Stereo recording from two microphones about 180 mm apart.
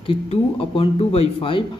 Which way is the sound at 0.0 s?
30° left (ahead or behind).